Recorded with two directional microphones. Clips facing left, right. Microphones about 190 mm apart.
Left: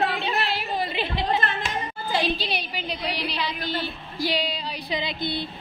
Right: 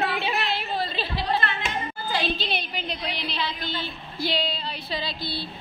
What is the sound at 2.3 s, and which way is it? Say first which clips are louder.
A woman's voice: left 1 dB; 10° left (ahead or behind).